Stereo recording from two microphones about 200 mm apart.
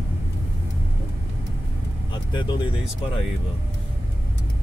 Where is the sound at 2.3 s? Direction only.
25° left (ahead or behind).